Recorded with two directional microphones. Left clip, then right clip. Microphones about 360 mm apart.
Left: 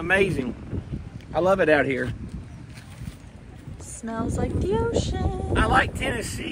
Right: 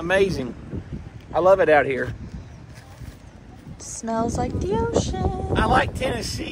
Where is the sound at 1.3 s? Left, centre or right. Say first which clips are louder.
Right 4 dB; right.